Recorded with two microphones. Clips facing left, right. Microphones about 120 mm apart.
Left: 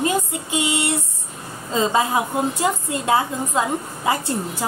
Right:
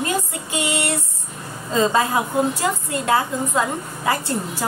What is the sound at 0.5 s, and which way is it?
A woman's voice, 20° left (ahead or behind).